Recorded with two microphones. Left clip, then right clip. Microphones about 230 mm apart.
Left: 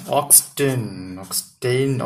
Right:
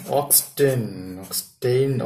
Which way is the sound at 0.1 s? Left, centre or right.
Left.